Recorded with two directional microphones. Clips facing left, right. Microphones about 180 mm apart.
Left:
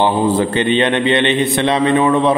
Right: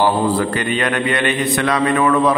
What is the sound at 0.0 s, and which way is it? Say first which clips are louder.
A man's voice: left 2 dB; 25° left (ahead or behind).